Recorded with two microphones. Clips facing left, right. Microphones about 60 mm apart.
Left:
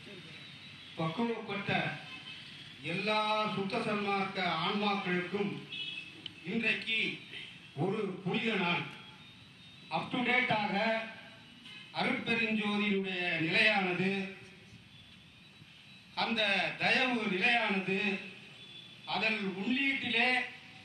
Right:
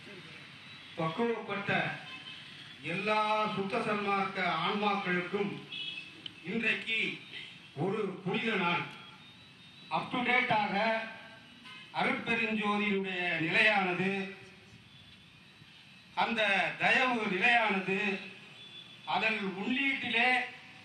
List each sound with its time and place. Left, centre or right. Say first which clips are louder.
0.9 s speech: right 2 dB; right
2.8 s a man's voice: right 2 dB; centre
5.0 s speech: right 1 dB; right
6.4 s a man's voice: right 1 dB; centre
9.8 s a man's voice: right 1 dB; centre
16.3 s a man's voice: even; centre